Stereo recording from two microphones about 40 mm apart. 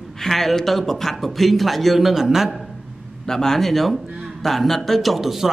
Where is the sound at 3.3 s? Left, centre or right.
Centre.